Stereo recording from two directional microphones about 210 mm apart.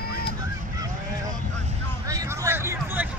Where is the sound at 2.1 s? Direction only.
15° right (ahead or behind).